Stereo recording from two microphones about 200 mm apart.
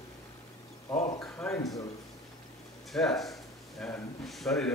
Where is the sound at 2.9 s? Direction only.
Centre (ahead or behind).